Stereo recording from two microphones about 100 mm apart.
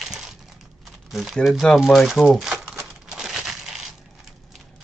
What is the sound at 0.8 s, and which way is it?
Speech, centre (ahead or behind).